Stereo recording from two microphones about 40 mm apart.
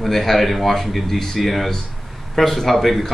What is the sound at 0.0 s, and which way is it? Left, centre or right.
Speech, centre.